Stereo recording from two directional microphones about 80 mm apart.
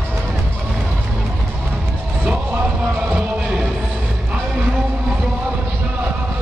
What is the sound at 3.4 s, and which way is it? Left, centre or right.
Music, centre.